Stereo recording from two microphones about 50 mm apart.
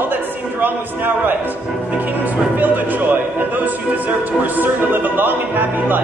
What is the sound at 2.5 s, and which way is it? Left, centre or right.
Speech, right.